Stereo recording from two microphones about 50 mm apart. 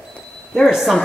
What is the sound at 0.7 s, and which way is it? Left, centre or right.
Speech, centre.